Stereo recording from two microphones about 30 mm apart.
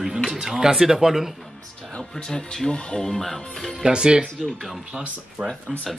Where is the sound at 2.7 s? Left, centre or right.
Left.